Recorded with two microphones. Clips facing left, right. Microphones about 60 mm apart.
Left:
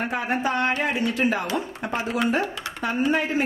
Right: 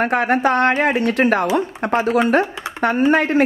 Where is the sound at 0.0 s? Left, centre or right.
Right.